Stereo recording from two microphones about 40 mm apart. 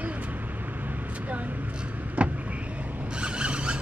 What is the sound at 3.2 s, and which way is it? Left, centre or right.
Zipper, right.